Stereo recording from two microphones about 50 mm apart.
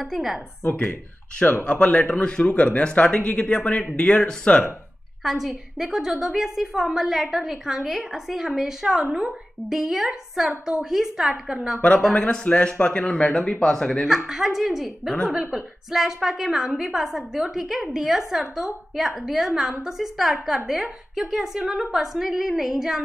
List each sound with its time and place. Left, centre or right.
0.0 s a woman's voice: centre
0.7 s speech: left
1.8 s speech: left
5.2 s a woman's voice: centre
12.1 s speech: left
14.0 s a woman's voice: centre